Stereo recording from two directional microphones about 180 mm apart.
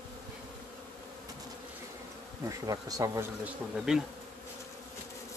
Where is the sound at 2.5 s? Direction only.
20° right (ahead or behind).